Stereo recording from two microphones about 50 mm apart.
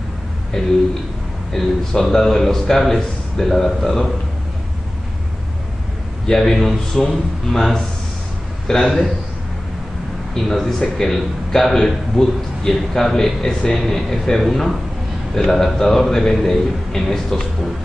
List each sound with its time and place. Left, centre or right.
0.5 s a man's voice: centre
6.2 s a man's voice: centre
10.3 s a man's voice: centre
13.7 s a man's voice: centre